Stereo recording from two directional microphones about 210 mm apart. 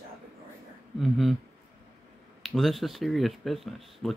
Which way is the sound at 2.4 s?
Centre (ahead or behind).